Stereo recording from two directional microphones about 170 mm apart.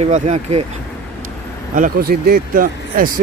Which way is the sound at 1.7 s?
55° right (ahead or behind).